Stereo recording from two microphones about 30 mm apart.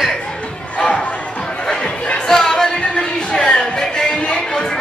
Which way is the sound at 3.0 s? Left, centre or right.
Left.